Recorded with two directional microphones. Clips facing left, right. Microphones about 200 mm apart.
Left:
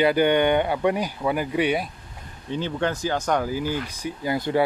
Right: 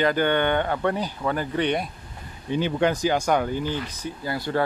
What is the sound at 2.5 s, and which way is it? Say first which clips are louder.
Speech: right 3 dB; 15° right (ahead or behind).